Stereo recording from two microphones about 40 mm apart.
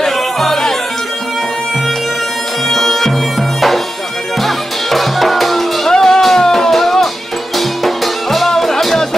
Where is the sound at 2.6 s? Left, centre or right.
Centre.